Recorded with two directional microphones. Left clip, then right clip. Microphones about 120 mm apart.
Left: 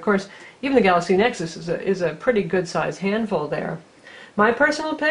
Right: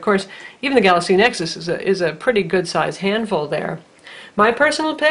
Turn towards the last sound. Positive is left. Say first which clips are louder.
# right 3 dB
turn(degrees=-30)  # may be behind; listen again after turning